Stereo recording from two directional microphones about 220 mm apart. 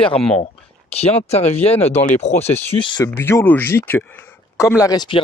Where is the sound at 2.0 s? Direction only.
30° left (ahead or behind).